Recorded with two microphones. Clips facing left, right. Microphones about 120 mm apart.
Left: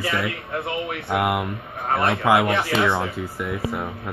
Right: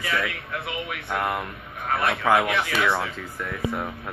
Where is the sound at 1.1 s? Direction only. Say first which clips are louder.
Left 5 dB; 15° left (ahead or behind).